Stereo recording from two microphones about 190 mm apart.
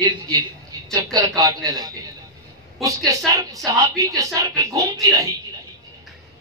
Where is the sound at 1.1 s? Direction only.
20° right (ahead or behind).